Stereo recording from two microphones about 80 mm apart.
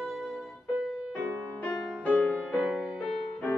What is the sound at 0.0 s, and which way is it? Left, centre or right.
Music, centre.